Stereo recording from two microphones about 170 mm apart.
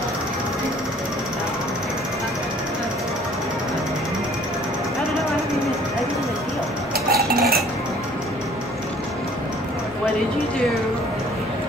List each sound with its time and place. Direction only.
7.1 s cutlery: 65° right (ahead or behind)